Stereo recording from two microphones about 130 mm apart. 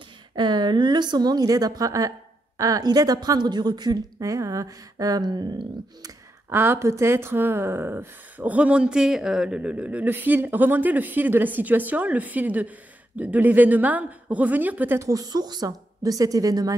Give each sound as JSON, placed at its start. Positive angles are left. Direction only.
{"t": 0.4, "sound": "a woman's voice", "side_deg": -35}
{"t": 6.5, "sound": "speech", "side_deg": -15}